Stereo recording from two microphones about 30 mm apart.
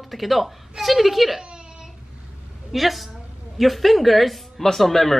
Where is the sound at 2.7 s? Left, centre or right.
Centre.